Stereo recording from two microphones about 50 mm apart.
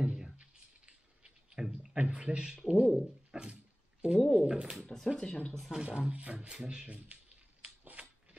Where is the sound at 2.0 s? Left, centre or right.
Right.